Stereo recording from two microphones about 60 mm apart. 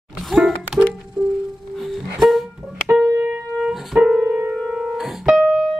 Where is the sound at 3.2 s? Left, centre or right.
Right.